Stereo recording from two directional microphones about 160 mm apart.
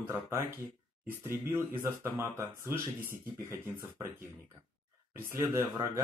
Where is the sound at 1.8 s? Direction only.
15° right (ahead or behind).